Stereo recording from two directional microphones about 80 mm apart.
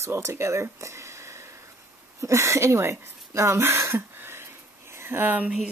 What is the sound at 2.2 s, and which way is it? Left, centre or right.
Throat clearing, right.